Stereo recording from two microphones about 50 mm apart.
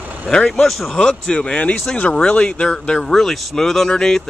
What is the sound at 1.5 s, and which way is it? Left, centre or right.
Speech, left.